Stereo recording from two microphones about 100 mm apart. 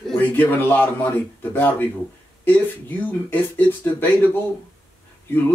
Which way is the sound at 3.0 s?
20° left (ahead or behind).